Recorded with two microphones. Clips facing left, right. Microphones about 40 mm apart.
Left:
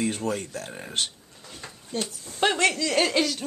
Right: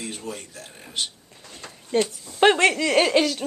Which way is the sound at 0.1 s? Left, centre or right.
Left.